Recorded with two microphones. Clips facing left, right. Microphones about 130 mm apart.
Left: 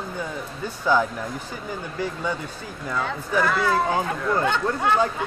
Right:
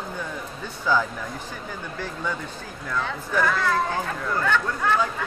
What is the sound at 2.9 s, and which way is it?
Speech, 10° left (ahead or behind).